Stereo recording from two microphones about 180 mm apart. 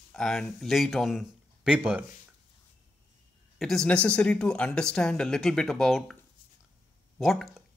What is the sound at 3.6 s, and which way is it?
Speech, centre (ahead or behind).